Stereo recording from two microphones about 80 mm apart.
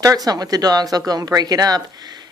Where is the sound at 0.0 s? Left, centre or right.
Right.